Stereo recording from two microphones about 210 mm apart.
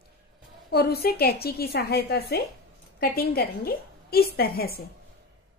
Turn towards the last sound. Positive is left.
turn(degrees=45)  # may be behind; listen again after turning